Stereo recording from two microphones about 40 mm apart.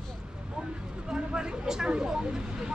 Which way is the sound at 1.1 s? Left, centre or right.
Centre.